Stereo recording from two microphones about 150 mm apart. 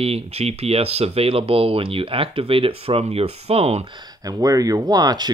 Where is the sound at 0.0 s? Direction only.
40° right (ahead or behind).